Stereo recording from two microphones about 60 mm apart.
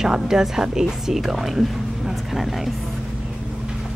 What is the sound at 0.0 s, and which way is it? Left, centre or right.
Speech, centre.